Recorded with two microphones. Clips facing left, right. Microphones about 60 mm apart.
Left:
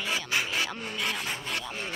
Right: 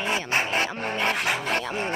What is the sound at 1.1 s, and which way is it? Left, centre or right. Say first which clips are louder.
Rub: right 8 dB; right.